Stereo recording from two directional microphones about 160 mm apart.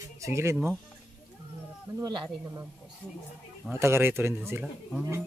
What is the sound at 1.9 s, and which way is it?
Speech, 25° right (ahead or behind).